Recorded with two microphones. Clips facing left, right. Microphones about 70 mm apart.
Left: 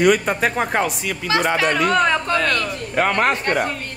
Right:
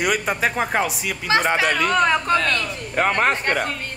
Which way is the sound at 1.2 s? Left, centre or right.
Right.